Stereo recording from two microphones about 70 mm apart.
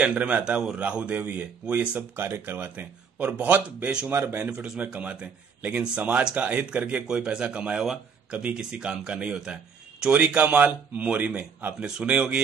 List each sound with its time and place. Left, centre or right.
0.0 s speech: centre
4.1 s speech: right
4.4 s speech: centre